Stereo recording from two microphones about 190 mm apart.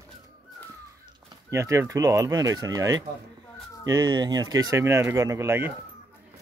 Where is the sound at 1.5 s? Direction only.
15° right (ahead or behind).